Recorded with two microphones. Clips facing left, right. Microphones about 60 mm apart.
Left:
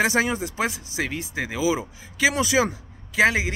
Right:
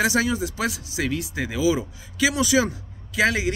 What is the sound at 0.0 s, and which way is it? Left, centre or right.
Speech, left.